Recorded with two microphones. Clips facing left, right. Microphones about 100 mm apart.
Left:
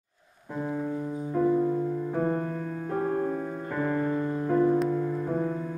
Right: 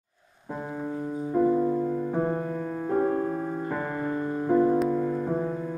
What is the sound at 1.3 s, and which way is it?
Music, 20° right (ahead or behind).